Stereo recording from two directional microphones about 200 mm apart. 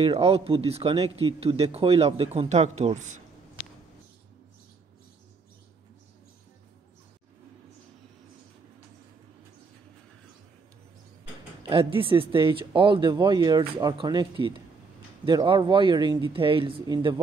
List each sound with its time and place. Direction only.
0.0 s speech: 30° right (ahead or behind)
11.9 s speech: 25° right (ahead or behind)